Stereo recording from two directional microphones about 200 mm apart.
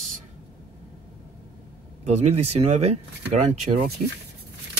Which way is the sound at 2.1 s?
35° right (ahead or behind).